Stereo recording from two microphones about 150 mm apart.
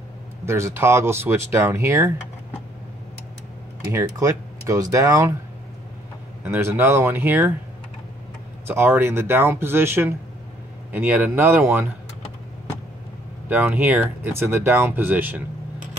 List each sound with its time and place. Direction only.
0.5 s speech: 20° right (ahead or behind)
3.9 s speech: 20° right (ahead or behind)
6.4 s speech: 15° right (ahead or behind)
8.6 s speech: 15° right (ahead or behind)
13.5 s speech: 10° right (ahead or behind)